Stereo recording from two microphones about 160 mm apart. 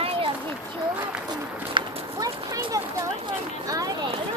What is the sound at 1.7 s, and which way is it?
Clip-clop, 25° right (ahead or behind).